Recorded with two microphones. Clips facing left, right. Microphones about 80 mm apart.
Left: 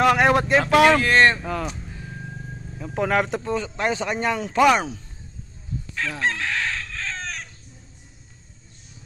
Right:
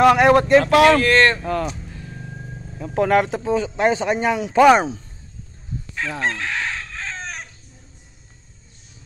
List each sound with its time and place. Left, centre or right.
0.0 s speech: centre
2.8 s speech: centre
3.4 s speech: centre
4.6 s speech: right
5.9 s chicken: centre
6.2 s chicken: centre